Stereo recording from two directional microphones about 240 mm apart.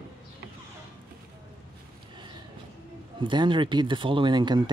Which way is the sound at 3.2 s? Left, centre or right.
Centre.